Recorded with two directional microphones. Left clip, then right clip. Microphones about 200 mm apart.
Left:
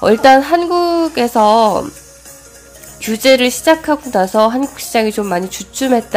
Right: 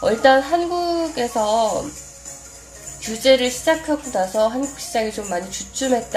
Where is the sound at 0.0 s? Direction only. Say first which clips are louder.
Left 6 dB; 30° left (ahead or behind).